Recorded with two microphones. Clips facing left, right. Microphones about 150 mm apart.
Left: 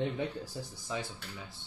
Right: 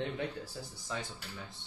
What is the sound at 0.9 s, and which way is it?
Speech, 15° left (ahead or behind).